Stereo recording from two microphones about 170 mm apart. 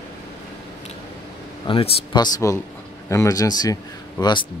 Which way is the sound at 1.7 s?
25° left (ahead or behind).